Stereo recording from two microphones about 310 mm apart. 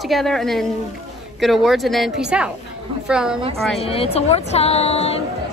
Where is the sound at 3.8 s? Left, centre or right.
Centre.